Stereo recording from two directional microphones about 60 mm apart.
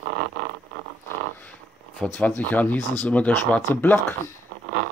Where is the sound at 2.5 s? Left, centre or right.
Left.